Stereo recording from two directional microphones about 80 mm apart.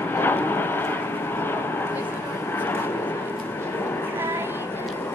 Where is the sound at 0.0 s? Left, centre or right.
Left.